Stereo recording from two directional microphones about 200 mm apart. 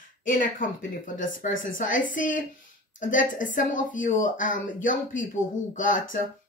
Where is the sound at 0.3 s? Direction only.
40° left (ahead or behind).